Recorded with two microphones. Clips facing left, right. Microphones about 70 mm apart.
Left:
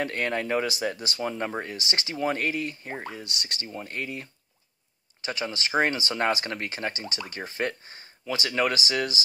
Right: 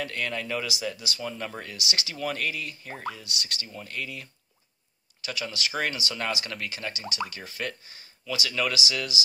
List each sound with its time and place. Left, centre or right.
0.0 s speech: left
3.3 s speech: left